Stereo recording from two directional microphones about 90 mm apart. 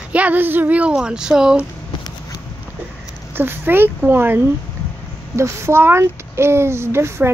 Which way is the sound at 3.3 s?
25° right (ahead or behind).